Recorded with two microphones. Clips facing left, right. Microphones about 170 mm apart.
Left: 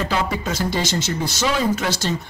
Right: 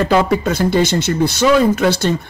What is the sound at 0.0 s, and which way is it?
Speech, 55° right (ahead or behind).